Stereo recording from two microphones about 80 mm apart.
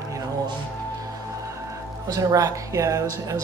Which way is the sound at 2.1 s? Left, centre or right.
Right.